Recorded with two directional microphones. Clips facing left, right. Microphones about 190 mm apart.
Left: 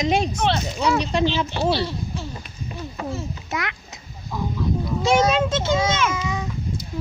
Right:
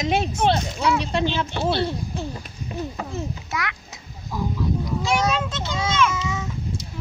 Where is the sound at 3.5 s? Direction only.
25° left (ahead or behind).